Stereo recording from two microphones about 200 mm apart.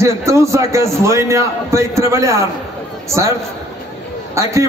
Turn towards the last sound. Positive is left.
turn(degrees=-15)  # may be behind; listen again after turning